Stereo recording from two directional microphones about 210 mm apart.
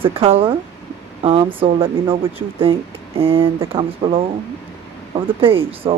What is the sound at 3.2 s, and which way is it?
Speech, 25° right (ahead or behind).